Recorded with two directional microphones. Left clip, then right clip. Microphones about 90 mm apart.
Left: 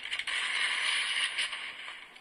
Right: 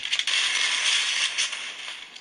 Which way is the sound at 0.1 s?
45° right (ahead or behind).